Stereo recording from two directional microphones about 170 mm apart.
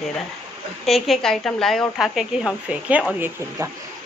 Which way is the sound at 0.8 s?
Centre (ahead or behind).